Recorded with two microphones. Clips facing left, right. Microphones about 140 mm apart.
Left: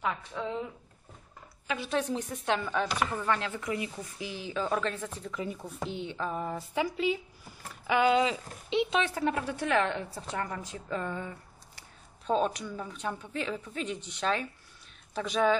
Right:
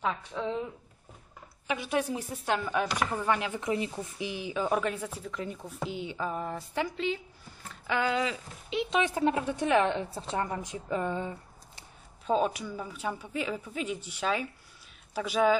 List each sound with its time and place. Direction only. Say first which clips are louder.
0.3 s speech: right 2 dB; 10° right (ahead or behind)
1.7 s speech: right 1 dB; 15° right (ahead or behind); by 7.2 s 5° left (ahead or behind)
7.8 s speech: left 4 dB; 15° left (ahead or behind)
9.0 s a woman's voice: right 3 dB; 15° right (ahead or behind)
12.3 s speech: right 1 dB; 5° right (ahead or behind)